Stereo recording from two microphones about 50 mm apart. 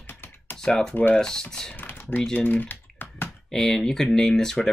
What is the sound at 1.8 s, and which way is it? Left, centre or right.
Typing, left.